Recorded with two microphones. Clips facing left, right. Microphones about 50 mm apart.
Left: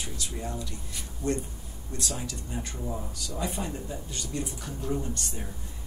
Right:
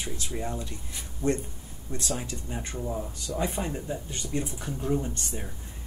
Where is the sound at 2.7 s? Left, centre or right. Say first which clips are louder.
Right 6 dB; centre.